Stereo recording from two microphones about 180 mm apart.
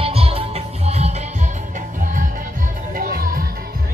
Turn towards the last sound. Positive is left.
turn(degrees=-50)  # may be behind; listen again after turning